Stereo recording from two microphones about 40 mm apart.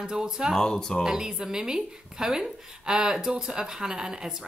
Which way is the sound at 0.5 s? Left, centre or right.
Centre.